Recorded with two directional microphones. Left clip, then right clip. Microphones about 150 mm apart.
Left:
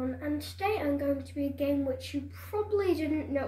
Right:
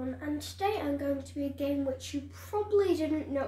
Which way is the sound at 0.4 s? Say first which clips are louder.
Even; 30° right (ahead or behind).